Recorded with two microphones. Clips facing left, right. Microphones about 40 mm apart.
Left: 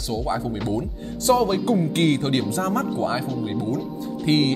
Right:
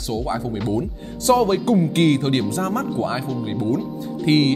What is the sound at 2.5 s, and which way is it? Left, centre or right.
Speech, right.